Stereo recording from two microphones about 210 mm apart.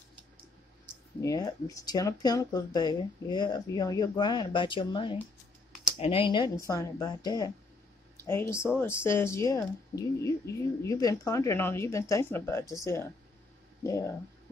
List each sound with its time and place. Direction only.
1.2 s speech: 15° left (ahead or behind)